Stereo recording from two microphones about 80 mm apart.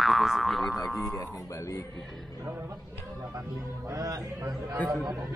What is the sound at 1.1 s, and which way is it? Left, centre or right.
Speech, left.